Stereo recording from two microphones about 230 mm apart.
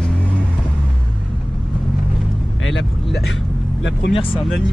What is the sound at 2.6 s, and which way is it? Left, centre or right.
Vehicle, left.